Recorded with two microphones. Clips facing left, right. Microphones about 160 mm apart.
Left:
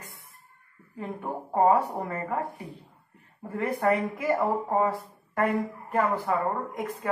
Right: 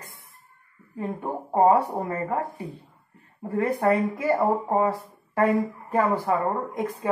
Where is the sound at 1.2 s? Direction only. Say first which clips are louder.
Right 3 dB; 20° right (ahead or behind).